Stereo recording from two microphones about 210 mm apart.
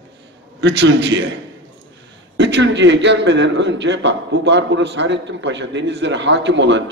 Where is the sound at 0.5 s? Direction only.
55° right (ahead or behind).